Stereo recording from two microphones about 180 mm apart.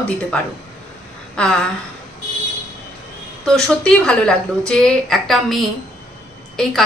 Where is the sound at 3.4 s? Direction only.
5° left (ahead or behind).